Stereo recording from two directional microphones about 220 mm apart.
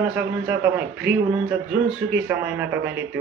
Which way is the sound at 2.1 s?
10° right (ahead or behind).